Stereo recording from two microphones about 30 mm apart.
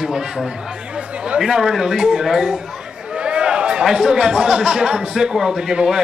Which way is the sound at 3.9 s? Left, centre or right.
Centre.